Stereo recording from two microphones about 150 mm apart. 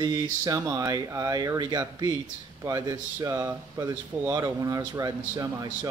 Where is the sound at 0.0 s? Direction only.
25° right (ahead or behind).